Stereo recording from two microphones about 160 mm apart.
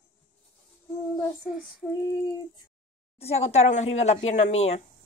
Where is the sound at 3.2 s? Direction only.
40° left (ahead or behind).